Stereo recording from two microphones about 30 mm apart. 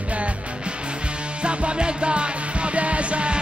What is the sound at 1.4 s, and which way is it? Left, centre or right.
Music, right.